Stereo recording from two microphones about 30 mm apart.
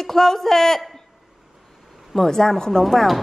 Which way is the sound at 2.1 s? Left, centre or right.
Centre.